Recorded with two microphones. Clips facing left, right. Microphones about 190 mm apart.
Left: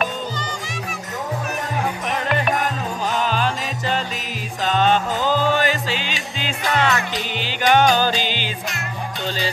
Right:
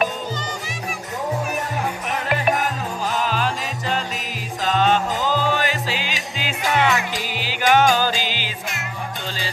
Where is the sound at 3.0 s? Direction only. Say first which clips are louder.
Left 1 dB; 5° right (ahead or behind).